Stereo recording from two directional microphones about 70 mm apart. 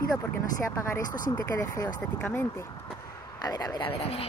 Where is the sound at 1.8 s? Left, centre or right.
Left.